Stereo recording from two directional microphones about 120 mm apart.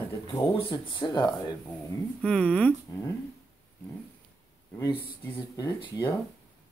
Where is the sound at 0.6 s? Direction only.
45° left (ahead or behind).